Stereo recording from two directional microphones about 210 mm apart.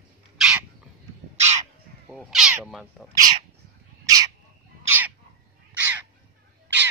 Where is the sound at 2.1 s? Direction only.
Centre (ahead or behind).